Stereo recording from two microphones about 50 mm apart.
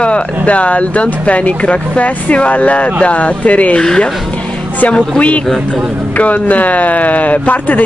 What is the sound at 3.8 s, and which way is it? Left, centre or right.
Speech, centre.